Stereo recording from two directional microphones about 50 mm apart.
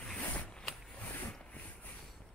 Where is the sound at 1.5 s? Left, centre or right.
Left.